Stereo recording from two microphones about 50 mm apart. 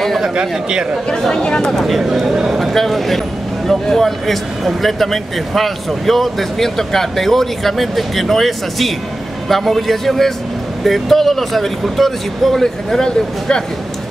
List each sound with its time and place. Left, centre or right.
0.2 s speech: centre
1.1 s speech: centre
1.7 s speech: centre
2.3 s speech: centre
2.6 s speech: centre